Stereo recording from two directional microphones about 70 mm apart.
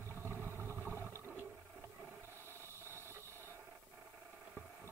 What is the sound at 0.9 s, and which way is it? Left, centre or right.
Toilet flush, right.